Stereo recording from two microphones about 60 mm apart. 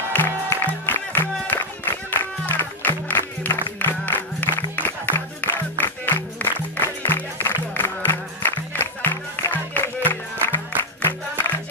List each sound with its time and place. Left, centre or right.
0.1 s music: left